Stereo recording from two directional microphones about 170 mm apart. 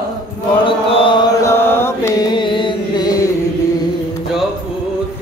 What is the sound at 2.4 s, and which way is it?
Carnatic music, 30° left (ahead or behind).